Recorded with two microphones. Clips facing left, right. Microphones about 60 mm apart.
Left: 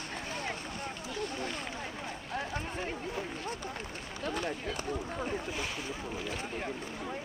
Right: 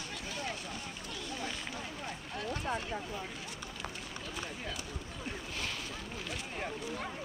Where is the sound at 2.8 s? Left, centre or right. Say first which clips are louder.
Left 3 dB; left.